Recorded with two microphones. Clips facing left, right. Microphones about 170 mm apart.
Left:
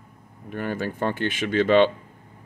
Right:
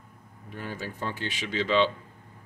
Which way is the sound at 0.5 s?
60° left (ahead or behind).